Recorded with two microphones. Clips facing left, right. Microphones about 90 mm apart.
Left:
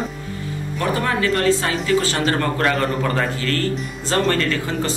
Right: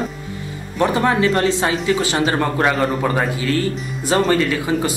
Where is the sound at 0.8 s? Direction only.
20° right (ahead or behind).